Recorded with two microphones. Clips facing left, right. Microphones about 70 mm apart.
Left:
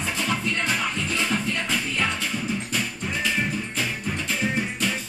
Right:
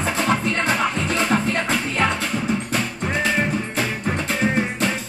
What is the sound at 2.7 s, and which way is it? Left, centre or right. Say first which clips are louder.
Music: right 5 dB; right.